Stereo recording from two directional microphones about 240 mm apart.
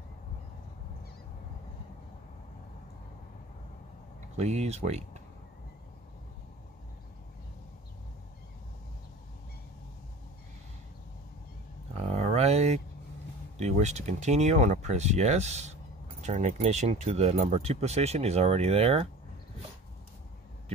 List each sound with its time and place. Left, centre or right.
4.4 s speech: right
12.0 s a sound: right
13.6 s speech: right